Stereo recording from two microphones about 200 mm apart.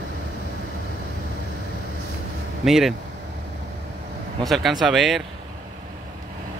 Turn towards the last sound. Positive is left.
turn(degrees=0)  # may be behind; listen again after turning